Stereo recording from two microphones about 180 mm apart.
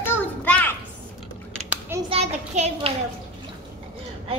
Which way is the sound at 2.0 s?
35° right (ahead or behind).